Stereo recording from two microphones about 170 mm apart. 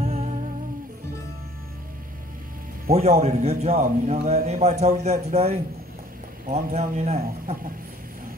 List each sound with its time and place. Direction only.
0.0 s humming: 35° right (ahead or behind)
2.9 s a man's voice: 40° right (ahead or behind)